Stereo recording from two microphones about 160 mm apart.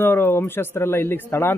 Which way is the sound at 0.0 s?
15° left (ahead or behind).